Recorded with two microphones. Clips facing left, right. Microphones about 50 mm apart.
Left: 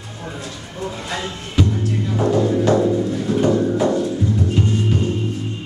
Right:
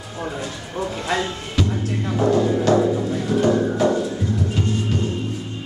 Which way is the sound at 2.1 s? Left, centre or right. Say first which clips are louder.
Even; centre.